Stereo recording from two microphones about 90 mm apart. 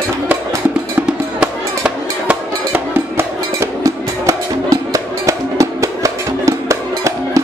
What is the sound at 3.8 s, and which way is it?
Music, 35° right (ahead or behind).